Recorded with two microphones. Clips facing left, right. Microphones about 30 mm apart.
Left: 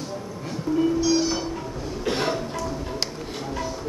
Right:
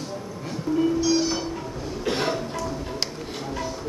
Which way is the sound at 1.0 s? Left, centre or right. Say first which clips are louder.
Left 1 dB; right.